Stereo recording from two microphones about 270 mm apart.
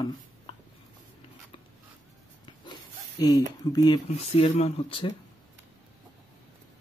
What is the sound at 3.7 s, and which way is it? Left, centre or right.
Speech, centre.